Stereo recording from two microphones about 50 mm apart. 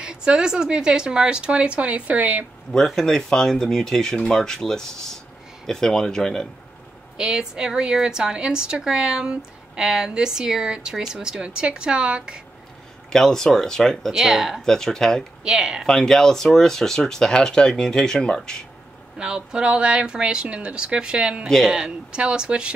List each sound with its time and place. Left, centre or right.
0.0 s a woman's voice: centre
2.9 s speech: centre
7.2 s a woman's voice: centre
13.1 s speech: centre
14.1 s a woman's voice: centre
14.6 s speech: centre
15.4 s a woman's voice: centre
15.8 s speech: centre
19.1 s a woman's voice: centre
21.5 s speech: centre
21.7 s a woman's voice: centre